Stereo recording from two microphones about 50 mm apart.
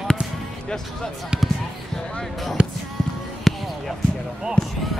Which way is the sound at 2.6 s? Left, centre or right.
Right.